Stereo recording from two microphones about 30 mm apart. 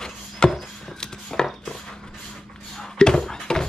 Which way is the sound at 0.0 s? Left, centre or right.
Left.